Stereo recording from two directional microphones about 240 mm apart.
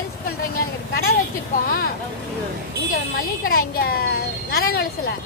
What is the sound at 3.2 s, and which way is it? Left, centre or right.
A woman's voice, left.